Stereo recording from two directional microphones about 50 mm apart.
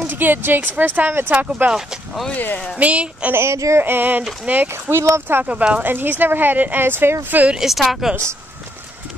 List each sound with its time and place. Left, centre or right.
0.0 s speech: right
1.3 s a woman's voice: right
2.3 s speech: left
2.8 s a woman's voice: right
3.3 s speech: right
3.8 s speech: right
4.9 s speech: right
5.4 s a woman's voice: right
5.9 s speech: right
7.5 s speech: centre